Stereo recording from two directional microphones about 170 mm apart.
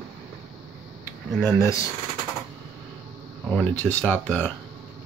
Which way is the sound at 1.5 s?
15° left (ahead or behind).